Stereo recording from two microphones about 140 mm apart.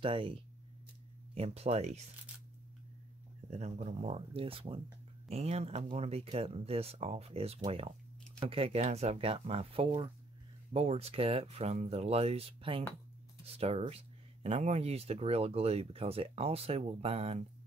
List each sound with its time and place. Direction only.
0.0 s speech: 40° right (ahead or behind)
3.4 s speech: 55° right (ahead or behind)